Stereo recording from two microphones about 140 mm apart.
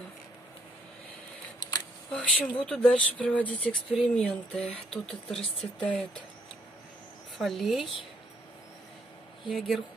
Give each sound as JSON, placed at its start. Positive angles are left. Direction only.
{"t": 1.6, "sound": "camera", "side_deg": 30}
{"t": 2.1, "sound": "speech", "side_deg": 10}
{"t": 7.3, "sound": "a woman's voice", "side_deg": 0}
{"t": 9.5, "sound": "a woman's voice", "side_deg": 0}